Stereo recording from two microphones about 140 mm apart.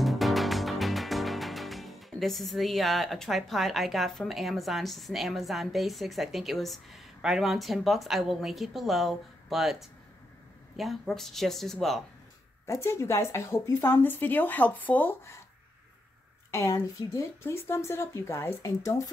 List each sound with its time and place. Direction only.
0.0 s music: centre (ahead or behind)
10.8 s speech: centre (ahead or behind)
12.6 s speech: 20° left (ahead or behind)
17.1 s speech: 20° left (ahead or behind)